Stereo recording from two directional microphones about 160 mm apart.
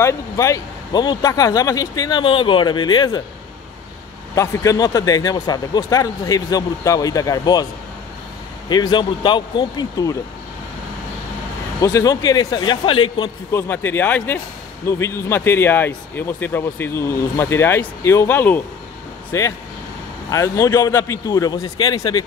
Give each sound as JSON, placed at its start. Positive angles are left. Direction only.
{"t": 0.0, "sound": "speech", "side_deg": 20}
{"t": 4.4, "sound": "speech", "side_deg": 20}
{"t": 8.6, "sound": "speech", "side_deg": 25}
{"t": 11.8, "sound": "speech", "side_deg": 20}
{"t": 13.5, "sound": "speech", "side_deg": 15}